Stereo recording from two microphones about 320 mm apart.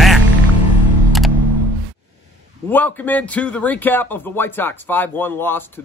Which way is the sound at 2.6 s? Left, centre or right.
Centre.